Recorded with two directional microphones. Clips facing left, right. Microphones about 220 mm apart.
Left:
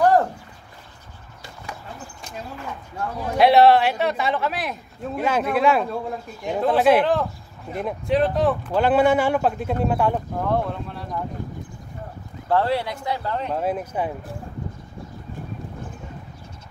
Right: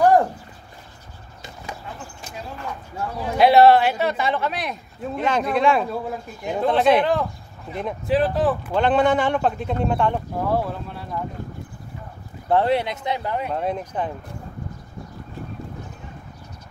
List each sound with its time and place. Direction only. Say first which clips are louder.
0.0 s a sound: right 1 dB; 10° right (ahead or behind)
3.0 s a man's voice: even; centre (ahead or behind)
10.4 s a man's voice: right 1 dB; 5° right (ahead or behind)
12.4 s speech: right 2 dB; 20° right (ahead or behind)
13.5 s a man's voice: left 1 dB; 5° left (ahead or behind)